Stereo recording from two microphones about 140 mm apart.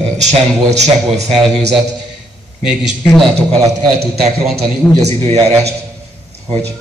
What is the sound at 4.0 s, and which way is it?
Speech, 45° right (ahead or behind).